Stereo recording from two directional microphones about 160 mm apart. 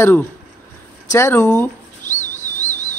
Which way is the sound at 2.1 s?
50° left (ahead or behind).